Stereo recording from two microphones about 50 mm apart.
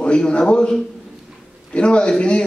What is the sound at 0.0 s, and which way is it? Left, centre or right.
A man's voice, centre.